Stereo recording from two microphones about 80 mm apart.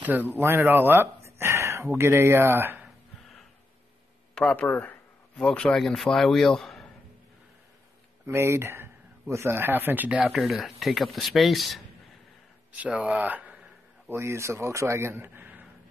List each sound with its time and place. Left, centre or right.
0.0 s speech: right
4.4 s speech: centre
5.3 s a man's voice: centre
8.3 s speech: right; by 11.8 s centre
12.7 s a sound: centre
14.1 s speech: right